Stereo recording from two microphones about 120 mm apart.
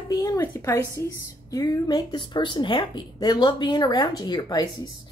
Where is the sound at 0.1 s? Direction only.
30° left (ahead or behind).